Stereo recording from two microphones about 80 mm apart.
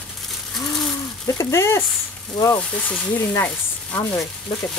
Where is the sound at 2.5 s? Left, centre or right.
Centre.